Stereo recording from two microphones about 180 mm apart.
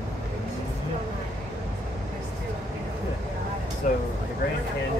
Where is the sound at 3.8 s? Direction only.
45° left (ahead or behind).